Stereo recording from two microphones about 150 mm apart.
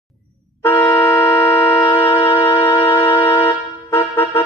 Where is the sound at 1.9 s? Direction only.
15° left (ahead or behind).